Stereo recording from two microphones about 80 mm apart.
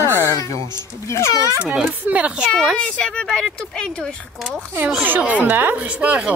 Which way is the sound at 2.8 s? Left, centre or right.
Centre.